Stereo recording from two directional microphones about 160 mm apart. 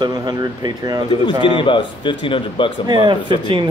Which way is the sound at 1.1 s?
30° left (ahead or behind).